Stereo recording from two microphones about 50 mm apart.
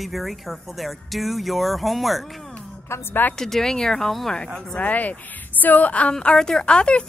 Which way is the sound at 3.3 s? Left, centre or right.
Centre.